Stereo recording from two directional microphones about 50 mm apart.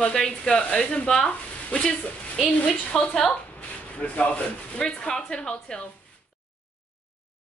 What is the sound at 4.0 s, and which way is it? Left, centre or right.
Speech, left.